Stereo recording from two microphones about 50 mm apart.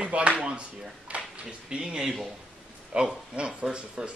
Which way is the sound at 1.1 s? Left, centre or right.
Right.